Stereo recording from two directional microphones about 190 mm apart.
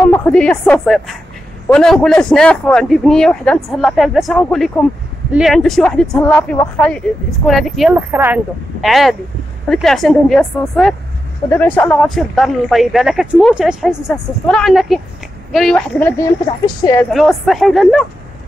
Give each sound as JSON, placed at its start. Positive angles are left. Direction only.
{"t": 0.0, "sound": "a woman's voice", "side_deg": 10}
{"t": 7.9, "sound": "speech", "side_deg": -10}
{"t": 8.8, "sound": "a woman's voice", "side_deg": 0}
{"t": 17.1, "sound": "speech", "side_deg": 0}